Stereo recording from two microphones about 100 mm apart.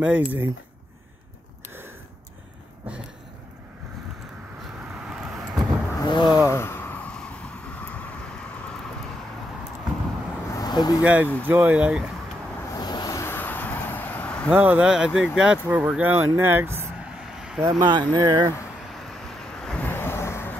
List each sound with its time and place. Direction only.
0.0 s speech: 15° right (ahead or behind)
6.0 s speech: 45° left (ahead or behind)
6.4 s vehicle: 25° left (ahead or behind)
10.5 s vehicle: 40° left (ahead or behind)
11.0 s speech: 15° right (ahead or behind)
12.7 s vehicle: 45° left (ahead or behind)
13.2 s vehicle: 20° left (ahead or behind)
14.5 s speech: 15° right (ahead or behind)
17.0 s vehicle: 5° right (ahead or behind)
17.6 s speech: 45° right (ahead or behind)
18.2 s speech: 30° right (ahead or behind)
18.9 s vehicle: 5° left (ahead or behind)
19.9 s vehicle: 20° left (ahead or behind)